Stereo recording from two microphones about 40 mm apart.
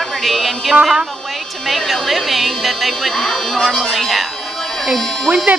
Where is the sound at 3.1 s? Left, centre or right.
Centre.